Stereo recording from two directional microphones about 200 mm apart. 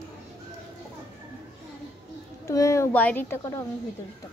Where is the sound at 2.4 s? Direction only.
15° left (ahead or behind).